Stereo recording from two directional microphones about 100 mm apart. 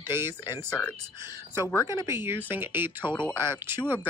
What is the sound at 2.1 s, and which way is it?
Speech, 20° right (ahead or behind).